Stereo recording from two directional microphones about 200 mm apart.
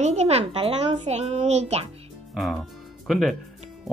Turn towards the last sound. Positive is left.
turn(degrees=0)  # may be behind; listen again after turning